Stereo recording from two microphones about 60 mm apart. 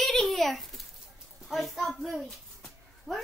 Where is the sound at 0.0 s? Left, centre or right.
Centre.